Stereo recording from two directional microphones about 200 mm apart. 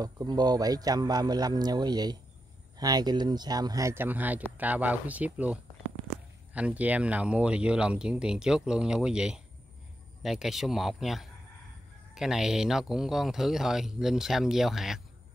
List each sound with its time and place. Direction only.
0.0 s speech: 20° right (ahead or behind); by 15.0 s centre (ahead or behind)